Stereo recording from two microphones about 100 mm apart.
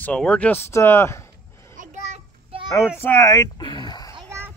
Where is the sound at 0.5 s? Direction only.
25° left (ahead or behind).